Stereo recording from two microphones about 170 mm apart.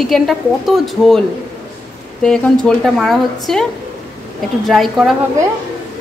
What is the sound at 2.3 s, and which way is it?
A woman's voice, 5° left (ahead or behind).